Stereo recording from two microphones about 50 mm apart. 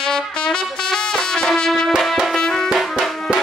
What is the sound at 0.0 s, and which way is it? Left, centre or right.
Music, centre.